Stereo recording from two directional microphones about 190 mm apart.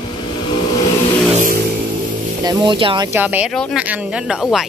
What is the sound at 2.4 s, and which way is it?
Speech, 20° right (ahead or behind).